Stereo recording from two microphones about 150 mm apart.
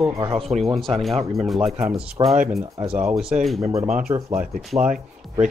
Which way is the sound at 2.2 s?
30° right (ahead or behind).